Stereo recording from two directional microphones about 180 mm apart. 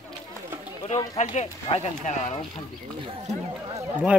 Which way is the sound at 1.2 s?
40° left (ahead or behind).